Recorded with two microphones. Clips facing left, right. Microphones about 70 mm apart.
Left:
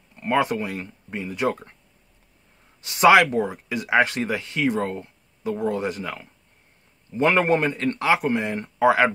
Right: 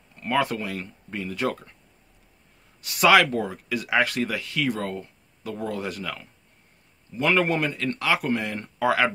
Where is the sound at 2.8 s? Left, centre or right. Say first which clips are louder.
Left 3 dB; left.